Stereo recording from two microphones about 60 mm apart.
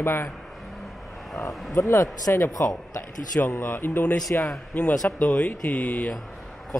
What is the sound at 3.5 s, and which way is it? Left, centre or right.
Speech, left.